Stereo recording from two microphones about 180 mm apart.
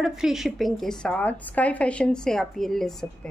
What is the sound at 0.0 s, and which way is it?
A woman's voice, centre (ahead or behind).